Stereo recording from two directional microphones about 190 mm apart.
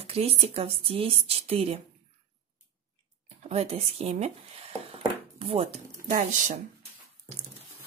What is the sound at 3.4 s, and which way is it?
Speech, 30° right (ahead or behind).